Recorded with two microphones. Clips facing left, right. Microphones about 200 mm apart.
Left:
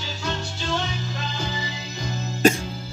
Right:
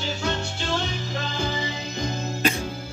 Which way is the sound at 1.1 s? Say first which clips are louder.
Right 3 dB; 55° right (ahead or behind).